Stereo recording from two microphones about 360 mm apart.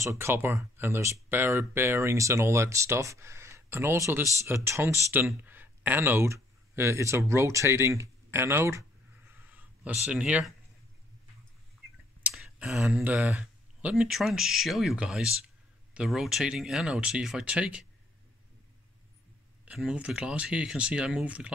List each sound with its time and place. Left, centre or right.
0.0 s speech: centre
12.2 s speech: centre
19.6 s speech: centre